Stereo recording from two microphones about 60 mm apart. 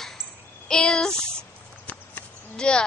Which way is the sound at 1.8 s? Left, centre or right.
Left.